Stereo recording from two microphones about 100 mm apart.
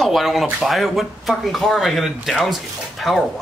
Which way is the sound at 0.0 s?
Centre (ahead or behind).